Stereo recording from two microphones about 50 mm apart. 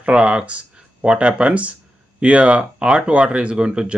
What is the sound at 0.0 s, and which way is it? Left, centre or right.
Speech, right.